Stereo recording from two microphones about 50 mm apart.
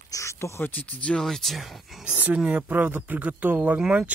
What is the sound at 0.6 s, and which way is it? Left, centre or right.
Speech, left.